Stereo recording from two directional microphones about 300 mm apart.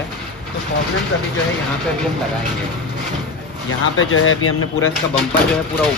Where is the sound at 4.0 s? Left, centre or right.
Left.